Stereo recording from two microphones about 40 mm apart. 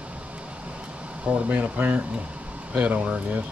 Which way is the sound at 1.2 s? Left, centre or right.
Right.